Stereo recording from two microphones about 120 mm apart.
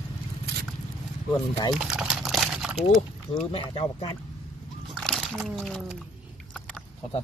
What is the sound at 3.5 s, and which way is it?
Speech, 55° left (ahead or behind).